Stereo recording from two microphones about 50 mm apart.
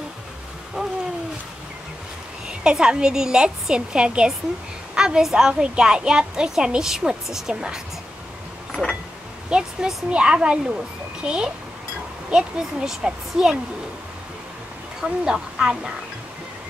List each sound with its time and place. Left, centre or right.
0.8 s a sound: centre
2.4 s a woman's voice: centre
9.5 s a woman's voice: centre
15.0 s speech: centre